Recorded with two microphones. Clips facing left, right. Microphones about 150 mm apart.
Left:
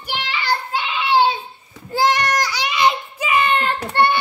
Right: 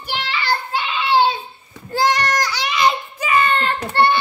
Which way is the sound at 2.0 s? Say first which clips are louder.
Even; 20° left (ahead or behind).